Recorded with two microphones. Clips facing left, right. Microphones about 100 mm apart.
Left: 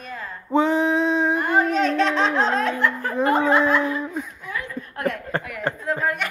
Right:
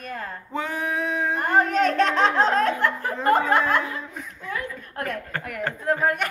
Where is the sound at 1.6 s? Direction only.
50° right (ahead or behind).